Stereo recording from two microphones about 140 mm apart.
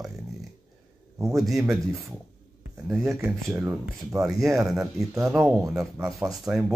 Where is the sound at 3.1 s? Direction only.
20° right (ahead or behind).